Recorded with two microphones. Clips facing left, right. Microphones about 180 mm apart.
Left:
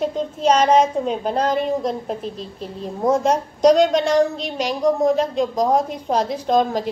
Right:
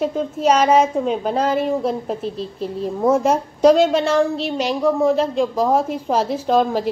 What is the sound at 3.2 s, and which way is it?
A woman's voice, 5° right (ahead or behind).